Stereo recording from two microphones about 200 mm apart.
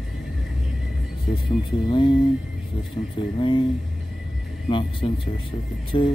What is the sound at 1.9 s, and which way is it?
Speech, 25° left (ahead or behind).